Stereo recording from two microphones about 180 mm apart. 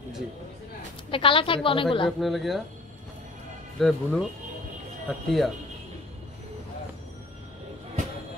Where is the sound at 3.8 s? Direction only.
Centre (ahead or behind).